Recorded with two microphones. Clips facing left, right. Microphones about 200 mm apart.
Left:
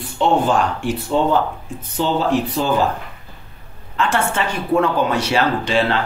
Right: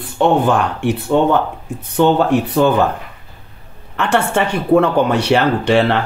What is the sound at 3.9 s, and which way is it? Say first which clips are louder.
Speech: right 4 dB; 65° right (ahead or behind).